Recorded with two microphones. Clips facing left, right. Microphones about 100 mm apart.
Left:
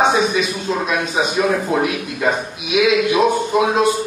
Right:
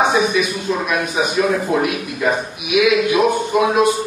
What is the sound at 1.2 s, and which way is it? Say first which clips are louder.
A man's voice: right 1 dB; 25° left (ahead or behind).